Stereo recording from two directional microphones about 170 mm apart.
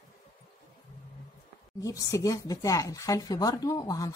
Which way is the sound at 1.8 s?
20° left (ahead or behind).